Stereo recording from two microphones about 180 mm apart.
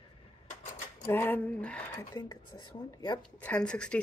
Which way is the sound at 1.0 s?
10° left (ahead or behind).